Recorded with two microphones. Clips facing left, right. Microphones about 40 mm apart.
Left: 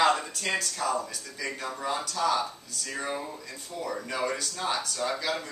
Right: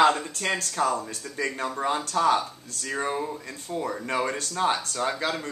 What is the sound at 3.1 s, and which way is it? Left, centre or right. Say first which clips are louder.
Speech: right 5 dB; centre.